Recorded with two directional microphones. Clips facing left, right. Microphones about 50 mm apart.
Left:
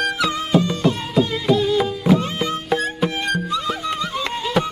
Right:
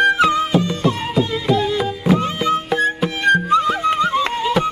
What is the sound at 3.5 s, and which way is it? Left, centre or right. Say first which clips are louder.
Music: right 7 dB; right.